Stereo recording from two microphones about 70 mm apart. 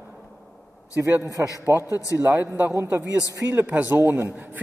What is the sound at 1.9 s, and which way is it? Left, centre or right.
Speech, left.